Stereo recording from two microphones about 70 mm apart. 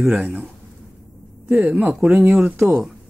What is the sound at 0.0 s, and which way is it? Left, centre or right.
Speech, centre.